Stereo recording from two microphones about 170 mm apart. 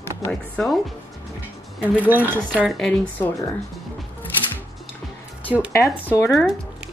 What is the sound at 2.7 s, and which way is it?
Speech, 5° left (ahead or behind).